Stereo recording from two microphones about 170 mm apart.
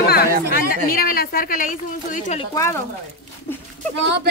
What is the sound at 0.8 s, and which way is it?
Speech, 60° left (ahead or behind).